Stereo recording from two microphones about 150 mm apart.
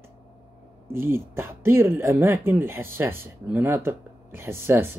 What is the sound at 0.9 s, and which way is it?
Speech, 15° right (ahead or behind).